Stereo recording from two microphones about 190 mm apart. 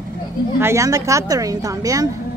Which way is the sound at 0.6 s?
15° right (ahead or behind).